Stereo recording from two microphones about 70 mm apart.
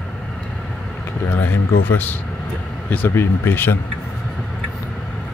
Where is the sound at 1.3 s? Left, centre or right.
Left.